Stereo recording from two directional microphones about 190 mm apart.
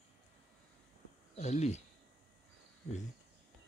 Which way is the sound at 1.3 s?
35° left (ahead or behind).